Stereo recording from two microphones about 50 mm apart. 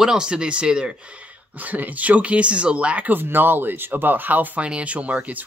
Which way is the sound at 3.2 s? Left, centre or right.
Right.